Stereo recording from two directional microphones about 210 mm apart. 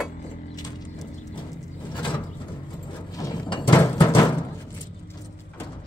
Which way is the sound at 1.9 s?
20° left (ahead or behind).